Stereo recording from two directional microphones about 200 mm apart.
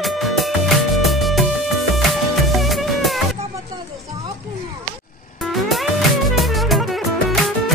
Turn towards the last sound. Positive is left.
turn(degrees=0)  # may be behind; listen again after turning